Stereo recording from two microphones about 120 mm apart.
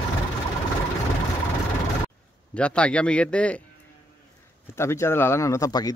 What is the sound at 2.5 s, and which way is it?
Speech, 10° left (ahead or behind).